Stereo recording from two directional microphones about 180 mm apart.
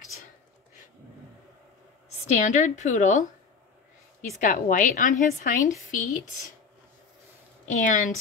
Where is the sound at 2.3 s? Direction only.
40° left (ahead or behind).